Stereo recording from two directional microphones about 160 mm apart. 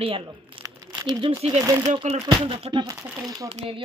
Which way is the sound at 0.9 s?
25° right (ahead or behind).